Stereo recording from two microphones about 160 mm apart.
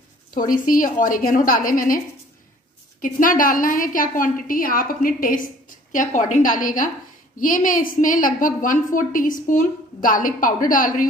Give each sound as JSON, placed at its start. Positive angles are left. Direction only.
{"t": 0.3, "sound": "a woman's voice", "side_deg": 60}
{"t": 3.0, "sound": "a woman's voice", "side_deg": 60}